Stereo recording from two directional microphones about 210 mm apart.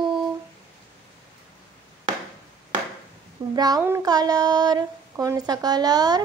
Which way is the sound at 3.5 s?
20° right (ahead or behind).